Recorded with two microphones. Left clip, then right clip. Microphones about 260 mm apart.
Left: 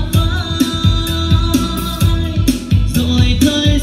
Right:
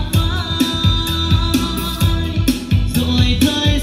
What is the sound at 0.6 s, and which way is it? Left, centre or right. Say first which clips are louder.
Music: even; right.